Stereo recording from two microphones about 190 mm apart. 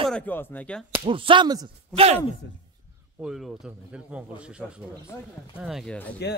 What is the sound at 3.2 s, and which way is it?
Speech, centre (ahead or behind).